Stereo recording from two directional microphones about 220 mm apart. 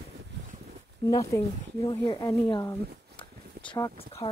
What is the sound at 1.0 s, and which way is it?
Speech, 15° left (ahead or behind).